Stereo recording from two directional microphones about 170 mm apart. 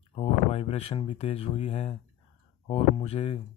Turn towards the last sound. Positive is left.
turn(degrees=35)  # may be behind; listen again after turning